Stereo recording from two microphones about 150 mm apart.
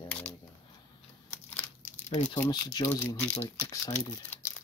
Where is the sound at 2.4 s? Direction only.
25° left (ahead or behind).